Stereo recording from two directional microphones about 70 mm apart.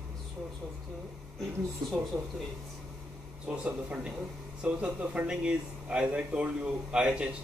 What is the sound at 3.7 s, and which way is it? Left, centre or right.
Speech, centre.